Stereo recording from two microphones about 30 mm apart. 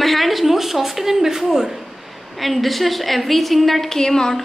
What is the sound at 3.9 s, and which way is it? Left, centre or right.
Speech, centre.